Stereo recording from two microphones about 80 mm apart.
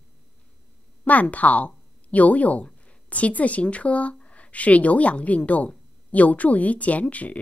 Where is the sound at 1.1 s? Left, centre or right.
Centre.